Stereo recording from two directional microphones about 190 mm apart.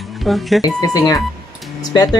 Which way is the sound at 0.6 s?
20° left (ahead or behind).